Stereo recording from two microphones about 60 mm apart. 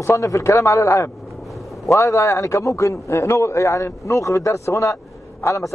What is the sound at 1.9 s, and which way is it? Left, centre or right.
A man's voice, left.